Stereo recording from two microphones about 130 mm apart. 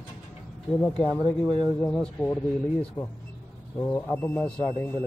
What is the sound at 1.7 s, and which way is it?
Speech, 5° left (ahead or behind).